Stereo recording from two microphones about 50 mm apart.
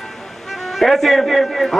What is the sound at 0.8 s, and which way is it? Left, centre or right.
Speech, centre.